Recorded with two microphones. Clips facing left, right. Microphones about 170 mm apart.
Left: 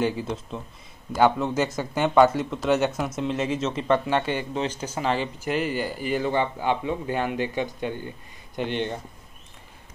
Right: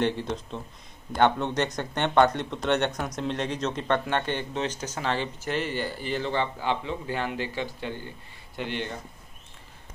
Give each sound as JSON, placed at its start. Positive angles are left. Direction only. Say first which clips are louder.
{"t": 0.0, "sound": "speech", "louder": "left 1 dB", "side_deg": 5}